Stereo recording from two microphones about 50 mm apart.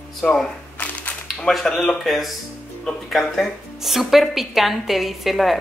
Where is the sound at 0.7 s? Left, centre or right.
Left.